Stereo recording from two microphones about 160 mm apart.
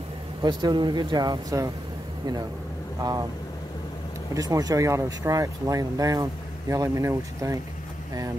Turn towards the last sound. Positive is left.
turn(degrees=-20)  # may be behind; listen again after turning